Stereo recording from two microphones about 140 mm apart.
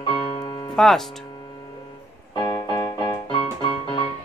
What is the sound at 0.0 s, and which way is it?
Music, 35° left (ahead or behind).